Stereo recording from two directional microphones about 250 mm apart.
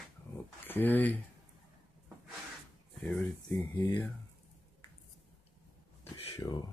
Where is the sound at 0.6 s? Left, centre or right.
Centre.